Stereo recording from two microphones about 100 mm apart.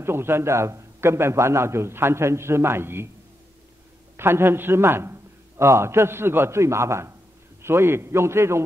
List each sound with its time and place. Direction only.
0.0 s a man's voice: 25° right (ahead or behind)
4.2 s a man's voice: 25° right (ahead or behind)